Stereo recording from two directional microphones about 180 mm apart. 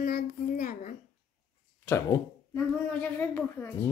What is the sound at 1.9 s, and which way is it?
Speech, 15° left (ahead or behind).